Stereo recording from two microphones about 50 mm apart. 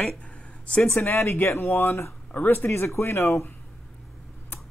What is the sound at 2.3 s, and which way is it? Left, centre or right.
Speech, left.